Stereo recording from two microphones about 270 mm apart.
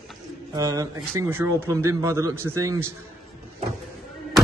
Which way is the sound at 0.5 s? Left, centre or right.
Centre.